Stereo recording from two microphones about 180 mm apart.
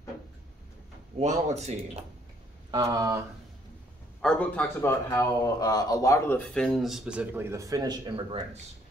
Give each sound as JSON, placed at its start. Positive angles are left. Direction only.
{"t": 1.2, "sound": "speech", "side_deg": -35}
{"t": 2.7, "sound": "speech", "side_deg": -20}
{"t": 4.2, "sound": "speech", "side_deg": 5}